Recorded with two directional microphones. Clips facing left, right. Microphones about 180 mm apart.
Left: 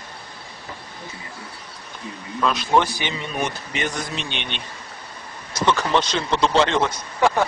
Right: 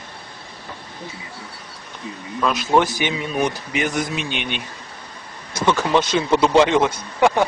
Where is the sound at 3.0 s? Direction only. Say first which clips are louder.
Right 5 dB; 10° right (ahead or behind).